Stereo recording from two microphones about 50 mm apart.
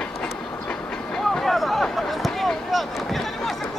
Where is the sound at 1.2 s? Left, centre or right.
Centre.